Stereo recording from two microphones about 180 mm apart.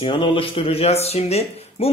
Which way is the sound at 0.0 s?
30° left (ahead or behind).